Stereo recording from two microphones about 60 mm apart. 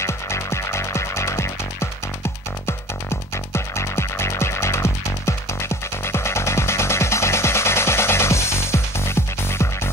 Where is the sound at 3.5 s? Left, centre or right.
Left.